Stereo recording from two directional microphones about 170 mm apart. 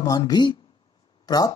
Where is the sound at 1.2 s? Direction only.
20° left (ahead or behind).